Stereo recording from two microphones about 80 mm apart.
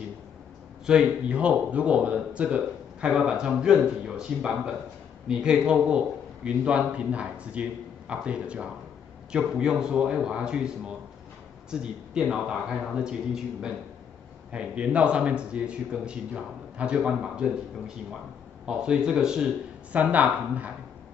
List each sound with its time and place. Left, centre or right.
0.8 s speech: centre
20.0 s speech: right